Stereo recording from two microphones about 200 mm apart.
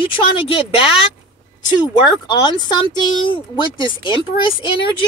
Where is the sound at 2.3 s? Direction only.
20° left (ahead or behind).